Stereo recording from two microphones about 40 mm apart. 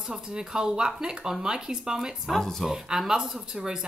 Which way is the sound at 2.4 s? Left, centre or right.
Centre.